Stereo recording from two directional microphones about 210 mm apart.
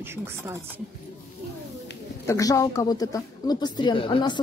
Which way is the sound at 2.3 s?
15° left (ahead or behind).